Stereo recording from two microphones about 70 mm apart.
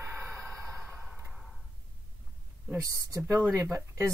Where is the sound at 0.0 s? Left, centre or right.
Right.